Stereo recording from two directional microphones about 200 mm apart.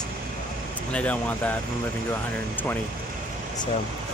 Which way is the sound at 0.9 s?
5° left (ahead or behind).